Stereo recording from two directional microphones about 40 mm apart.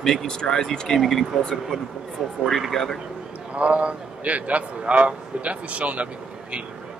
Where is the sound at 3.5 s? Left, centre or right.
Right.